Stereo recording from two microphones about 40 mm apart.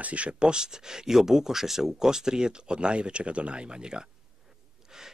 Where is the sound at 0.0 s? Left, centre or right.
Right.